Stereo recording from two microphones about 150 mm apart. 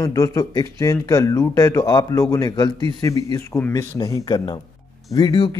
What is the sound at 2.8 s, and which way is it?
Speech, 40° right (ahead or behind).